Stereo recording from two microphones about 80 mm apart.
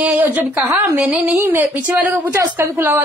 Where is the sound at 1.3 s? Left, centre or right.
Right.